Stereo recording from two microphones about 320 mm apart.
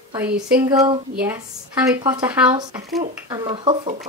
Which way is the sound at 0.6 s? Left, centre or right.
Centre.